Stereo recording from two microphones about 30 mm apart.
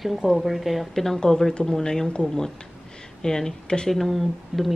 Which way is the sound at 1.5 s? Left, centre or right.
Left.